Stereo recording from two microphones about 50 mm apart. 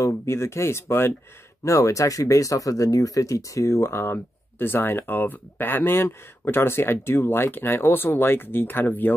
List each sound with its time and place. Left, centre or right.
0.0 s speech: left
1.6 s speech: left